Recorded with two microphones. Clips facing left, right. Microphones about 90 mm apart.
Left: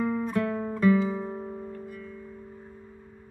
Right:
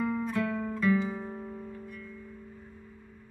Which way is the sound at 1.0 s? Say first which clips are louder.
Left 5 dB; 25° left (ahead or behind).